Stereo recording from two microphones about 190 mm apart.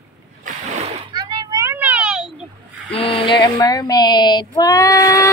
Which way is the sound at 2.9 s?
30° left (ahead or behind).